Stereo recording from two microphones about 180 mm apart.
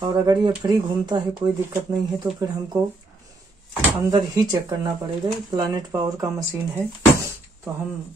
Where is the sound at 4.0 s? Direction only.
20° right (ahead or behind).